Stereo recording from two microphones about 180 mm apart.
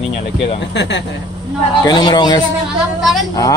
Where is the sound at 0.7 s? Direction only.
75° left (ahead or behind).